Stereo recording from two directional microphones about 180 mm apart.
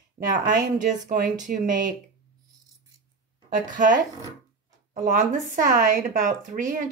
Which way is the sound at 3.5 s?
45° right (ahead or behind).